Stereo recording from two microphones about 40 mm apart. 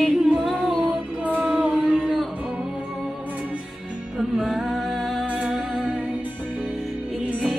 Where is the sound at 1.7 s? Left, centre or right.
Centre.